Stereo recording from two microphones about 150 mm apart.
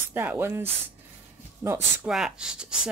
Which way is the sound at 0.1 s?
15° right (ahead or behind).